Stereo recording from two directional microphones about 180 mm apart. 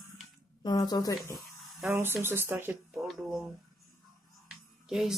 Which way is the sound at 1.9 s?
10° right (ahead or behind).